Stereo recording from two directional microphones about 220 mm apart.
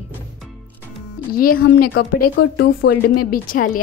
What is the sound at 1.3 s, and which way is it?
A woman's voice, 40° left (ahead or behind).